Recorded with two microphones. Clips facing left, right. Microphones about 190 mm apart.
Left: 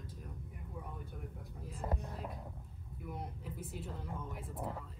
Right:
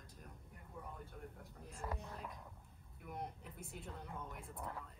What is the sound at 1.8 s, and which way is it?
Whispering, 35° left (ahead or behind).